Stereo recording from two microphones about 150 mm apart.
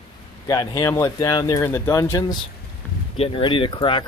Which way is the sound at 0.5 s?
25° left (ahead or behind).